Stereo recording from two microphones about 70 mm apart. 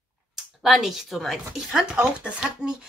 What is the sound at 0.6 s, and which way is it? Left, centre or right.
Speech, centre.